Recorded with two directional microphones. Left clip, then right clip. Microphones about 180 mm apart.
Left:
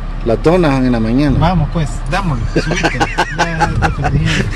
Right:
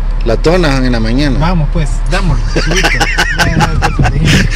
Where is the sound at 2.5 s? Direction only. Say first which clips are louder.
Right 3 dB; centre (ahead or behind).